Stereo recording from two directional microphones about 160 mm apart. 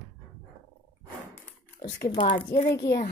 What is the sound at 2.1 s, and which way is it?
Speech, 30° left (ahead or behind).